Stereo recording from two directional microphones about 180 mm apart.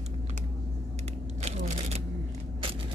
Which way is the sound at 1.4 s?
40° right (ahead or behind).